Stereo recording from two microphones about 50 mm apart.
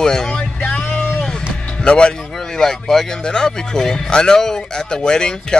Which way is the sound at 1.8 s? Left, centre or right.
Centre.